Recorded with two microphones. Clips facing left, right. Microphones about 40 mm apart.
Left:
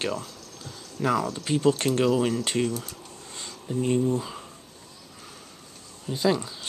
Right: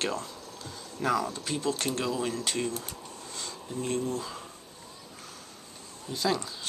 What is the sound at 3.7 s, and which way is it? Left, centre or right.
Speech, centre.